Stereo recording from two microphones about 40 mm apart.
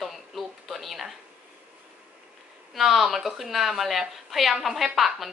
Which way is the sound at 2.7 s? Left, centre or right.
Centre.